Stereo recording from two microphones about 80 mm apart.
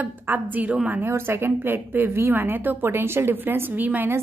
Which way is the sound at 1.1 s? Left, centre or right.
Right.